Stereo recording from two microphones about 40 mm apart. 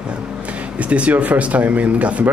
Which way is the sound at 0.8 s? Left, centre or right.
Right.